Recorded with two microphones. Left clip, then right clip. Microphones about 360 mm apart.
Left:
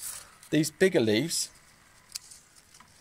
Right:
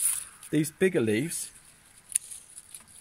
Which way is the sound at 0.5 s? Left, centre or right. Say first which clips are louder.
Left 2 dB; left.